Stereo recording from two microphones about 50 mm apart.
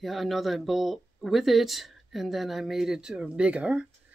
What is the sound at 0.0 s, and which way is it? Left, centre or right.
Speech, centre.